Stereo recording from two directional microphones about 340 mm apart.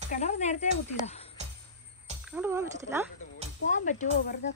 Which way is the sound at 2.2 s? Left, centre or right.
Centre.